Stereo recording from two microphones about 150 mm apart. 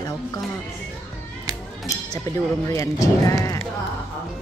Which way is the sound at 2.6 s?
20° left (ahead or behind).